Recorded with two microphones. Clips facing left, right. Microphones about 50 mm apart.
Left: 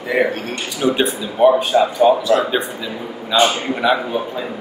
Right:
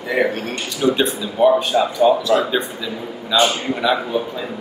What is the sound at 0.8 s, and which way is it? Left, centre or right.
A man's voice, centre.